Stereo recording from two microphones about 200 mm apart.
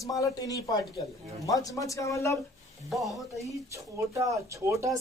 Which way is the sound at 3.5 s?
15° right (ahead or behind).